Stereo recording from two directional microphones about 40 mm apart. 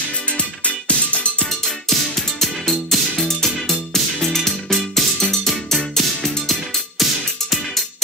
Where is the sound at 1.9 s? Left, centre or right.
Centre.